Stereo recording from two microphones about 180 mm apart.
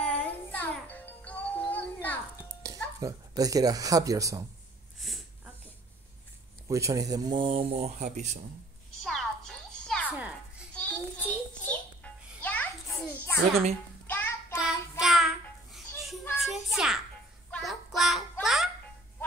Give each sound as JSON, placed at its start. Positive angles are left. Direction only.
{"t": 0.0, "sound": "music", "side_deg": 5}
{"t": 2.6, "sound": "speech", "side_deg": -20}
{"t": 5.0, "sound": "a sound", "side_deg": 0}
{"t": 6.7, "sound": "speech", "side_deg": -15}
{"t": 9.0, "sound": "music", "side_deg": 0}
{"t": 10.1, "sound": "children playing", "side_deg": -5}
{"t": 10.7, "sound": "a sound", "side_deg": 10}
{"t": 14.0, "sound": "child singing", "side_deg": 10}
{"t": 14.6, "sound": "child singing", "side_deg": 0}
{"t": 16.3, "sound": "child singing", "side_deg": 0}
{"t": 18.4, "sound": "music", "side_deg": 0}